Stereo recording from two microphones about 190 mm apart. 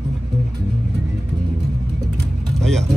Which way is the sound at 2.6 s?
Centre (ahead or behind).